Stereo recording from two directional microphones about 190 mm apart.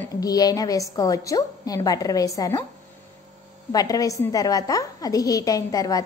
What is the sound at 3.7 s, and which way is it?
A woman's voice, 20° left (ahead or behind).